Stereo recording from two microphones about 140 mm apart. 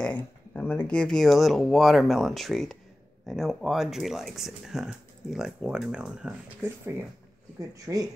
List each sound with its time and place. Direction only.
0.0 s speech: 10° left (ahead or behind)
7.8 s speech: 25° right (ahead or behind)